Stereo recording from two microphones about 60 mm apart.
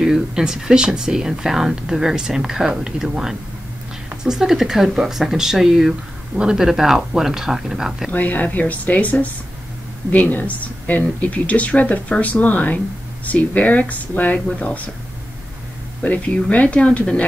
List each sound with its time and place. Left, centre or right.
0.0 s speech: centre
8.1 s speech: left
16.0 s speech: left